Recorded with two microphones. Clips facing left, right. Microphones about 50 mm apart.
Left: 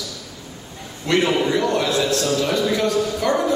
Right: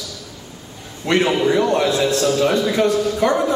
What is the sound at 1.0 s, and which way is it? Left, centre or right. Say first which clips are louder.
Speech: right 2 dB; right.